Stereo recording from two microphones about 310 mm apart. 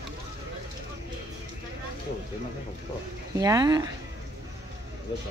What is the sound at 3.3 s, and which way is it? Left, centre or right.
Speech, centre.